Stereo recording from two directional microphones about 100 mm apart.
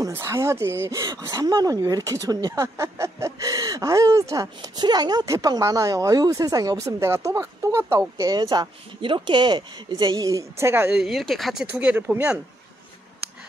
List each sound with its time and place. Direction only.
0.1 s speech: 30° right (ahead or behind)
0.9 s speech: 35° right (ahead or behind)
4.7 s speech: 45° right (ahead or behind); by 8.0 s 25° right (ahead or behind)
8.2 s speech: 40° right (ahead or behind)
9.0 s speech: 55° right (ahead or behind); by 10.4 s 40° right (ahead or behind)
10.6 s speech: 25° right (ahead or behind)
10.9 s speech: centre (ahead or behind)